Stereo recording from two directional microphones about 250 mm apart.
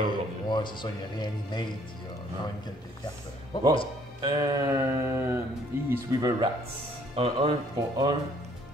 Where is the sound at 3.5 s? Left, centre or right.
Centre.